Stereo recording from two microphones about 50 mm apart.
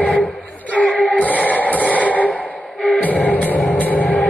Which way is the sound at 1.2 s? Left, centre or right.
Left.